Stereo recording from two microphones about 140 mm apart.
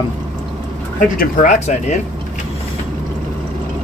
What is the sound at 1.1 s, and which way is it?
Speech, 65° left (ahead or behind).